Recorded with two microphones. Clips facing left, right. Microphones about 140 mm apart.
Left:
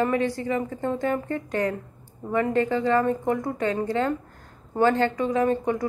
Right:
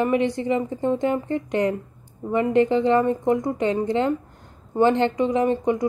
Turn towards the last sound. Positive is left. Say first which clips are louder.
# right 2 dB
turn(degrees=-20)  # may be behind; listen again after turning